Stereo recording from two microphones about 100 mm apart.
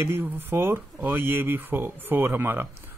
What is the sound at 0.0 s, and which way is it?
Speech, 20° right (ahead or behind).